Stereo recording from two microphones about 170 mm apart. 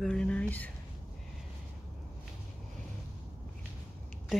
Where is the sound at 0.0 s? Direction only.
5° left (ahead or behind).